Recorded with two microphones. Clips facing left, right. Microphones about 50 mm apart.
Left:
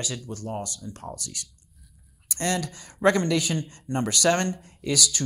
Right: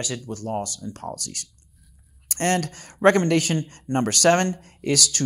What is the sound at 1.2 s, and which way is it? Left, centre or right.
Speech, right.